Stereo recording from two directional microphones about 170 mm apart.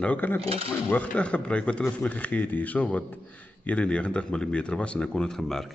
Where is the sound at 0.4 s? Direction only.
35° right (ahead or behind).